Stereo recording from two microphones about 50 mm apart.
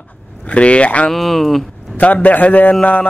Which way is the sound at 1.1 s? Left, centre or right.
Centre.